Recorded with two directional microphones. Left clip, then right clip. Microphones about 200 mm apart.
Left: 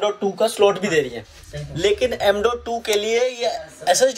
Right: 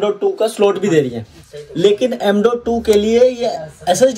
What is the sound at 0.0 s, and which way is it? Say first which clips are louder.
Speech: right 4 dB; 10° left (ahead or behind).